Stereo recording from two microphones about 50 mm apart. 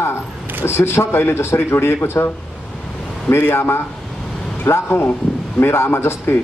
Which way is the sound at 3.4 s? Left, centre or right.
Left.